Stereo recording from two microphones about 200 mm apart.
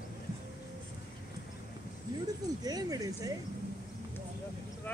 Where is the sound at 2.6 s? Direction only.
20° right (ahead or behind).